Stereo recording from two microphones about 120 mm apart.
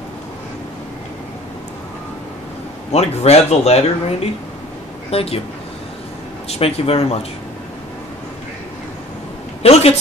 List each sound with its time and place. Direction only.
2.9 s speech: 60° left (ahead or behind)
6.6 s speech: 55° left (ahead or behind)
9.6 s speech: 60° left (ahead or behind)